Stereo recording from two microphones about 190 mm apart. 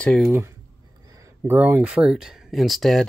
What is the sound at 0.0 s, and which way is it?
Speech, 5° left (ahead or behind).